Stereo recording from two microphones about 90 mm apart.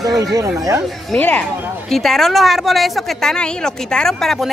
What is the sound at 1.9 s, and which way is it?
Speech, 5° left (ahead or behind).